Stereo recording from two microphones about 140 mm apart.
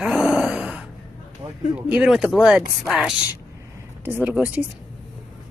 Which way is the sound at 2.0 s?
5° right (ahead or behind).